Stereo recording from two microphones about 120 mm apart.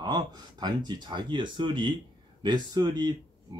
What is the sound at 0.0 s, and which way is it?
Speech, 35° right (ahead or behind).